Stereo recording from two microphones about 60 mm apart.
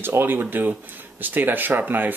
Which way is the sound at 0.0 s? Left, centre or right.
Right.